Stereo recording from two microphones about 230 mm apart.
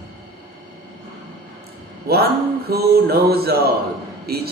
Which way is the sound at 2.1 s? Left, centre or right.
Right.